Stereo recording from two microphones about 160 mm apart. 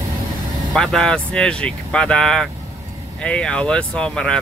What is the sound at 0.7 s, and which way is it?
Speech, 5° left (ahead or behind).